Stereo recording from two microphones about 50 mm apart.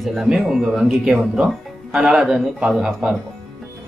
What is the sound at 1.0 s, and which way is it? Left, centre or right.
Speech, centre.